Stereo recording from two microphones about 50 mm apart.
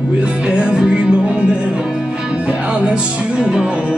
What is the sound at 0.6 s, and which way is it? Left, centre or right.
Music, right.